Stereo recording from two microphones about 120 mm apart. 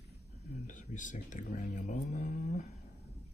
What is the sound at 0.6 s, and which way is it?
Speech, 90° left.